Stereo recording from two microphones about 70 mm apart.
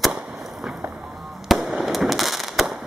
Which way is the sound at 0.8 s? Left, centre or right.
Right.